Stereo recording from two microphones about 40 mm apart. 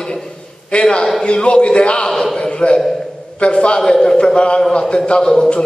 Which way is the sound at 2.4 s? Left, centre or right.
Left.